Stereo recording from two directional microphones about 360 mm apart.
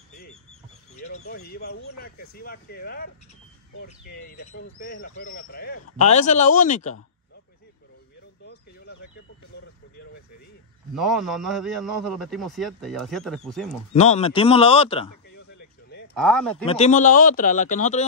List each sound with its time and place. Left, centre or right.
0.9 s a sound: centre
1.5 s speech: left
11.0 s a man's voice: centre
13.9 s speech: centre
16.2 s a man's voice: centre
16.6 s speech: centre